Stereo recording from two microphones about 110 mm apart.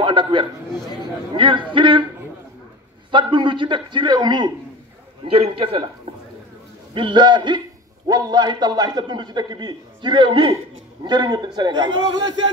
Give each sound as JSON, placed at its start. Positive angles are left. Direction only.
{"t": 0.0, "sound": "a man's voice", "side_deg": -45}
{"t": 3.1, "sound": "a man's voice", "side_deg": -45}
{"t": 5.2, "sound": "a man's voice", "side_deg": -60}
{"t": 6.9, "sound": "a man's voice", "side_deg": -45}